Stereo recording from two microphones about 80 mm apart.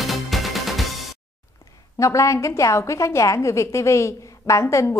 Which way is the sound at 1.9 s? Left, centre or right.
Left.